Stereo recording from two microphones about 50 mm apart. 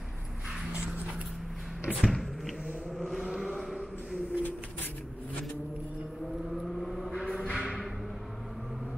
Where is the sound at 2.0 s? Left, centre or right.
Centre.